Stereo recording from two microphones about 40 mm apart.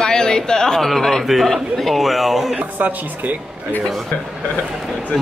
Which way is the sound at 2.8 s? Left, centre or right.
Right.